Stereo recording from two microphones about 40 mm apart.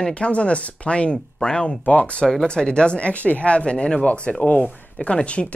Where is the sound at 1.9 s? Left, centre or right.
Left.